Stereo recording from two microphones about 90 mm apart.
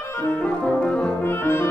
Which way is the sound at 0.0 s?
25° left (ahead or behind).